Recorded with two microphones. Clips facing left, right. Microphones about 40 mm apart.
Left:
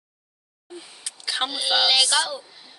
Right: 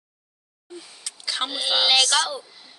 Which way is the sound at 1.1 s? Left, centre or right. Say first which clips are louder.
Left 1 dB; centre.